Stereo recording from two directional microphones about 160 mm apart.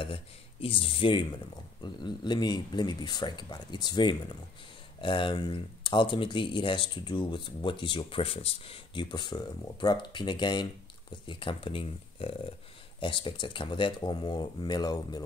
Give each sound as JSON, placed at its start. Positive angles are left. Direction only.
{"t": 0.0, "sound": "speech", "side_deg": 35}